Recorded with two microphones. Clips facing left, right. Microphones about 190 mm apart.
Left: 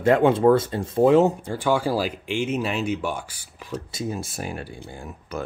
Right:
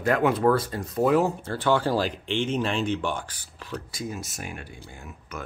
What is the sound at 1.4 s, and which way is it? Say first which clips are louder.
Speech: left 1 dB; 10° left (ahead or behind).